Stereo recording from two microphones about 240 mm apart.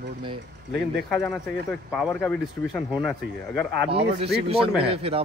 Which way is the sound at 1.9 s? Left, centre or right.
Centre.